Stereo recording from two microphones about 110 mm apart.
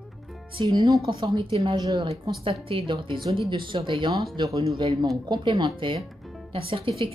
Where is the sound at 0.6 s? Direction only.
40° right (ahead or behind).